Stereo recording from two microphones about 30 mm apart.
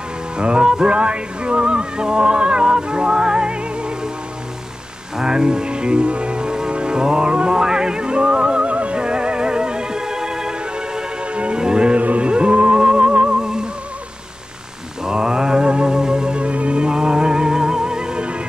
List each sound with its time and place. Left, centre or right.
0.4 s music: right
5.1 s music: right
8.7 s music: right
9.0 s music: right
11.3 s music: right
12.8 s theremin: right
13.4 s music: right
15.0 s music: right
16.3 s music: right
16.8 s music: right